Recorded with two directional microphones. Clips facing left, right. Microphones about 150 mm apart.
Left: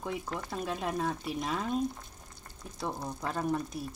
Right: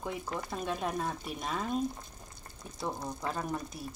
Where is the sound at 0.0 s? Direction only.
Centre (ahead or behind).